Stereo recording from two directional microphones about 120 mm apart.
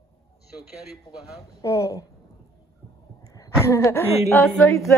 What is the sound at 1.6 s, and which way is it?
Speech, 25° left (ahead or behind).